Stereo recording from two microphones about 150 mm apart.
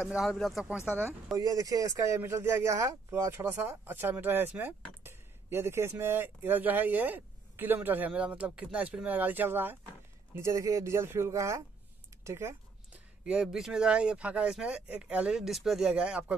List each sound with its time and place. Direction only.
0.2 s speech: centre (ahead or behind)
1.3 s a man's voice: 25° right (ahead or behind)
13.2 s speech: 5° right (ahead or behind)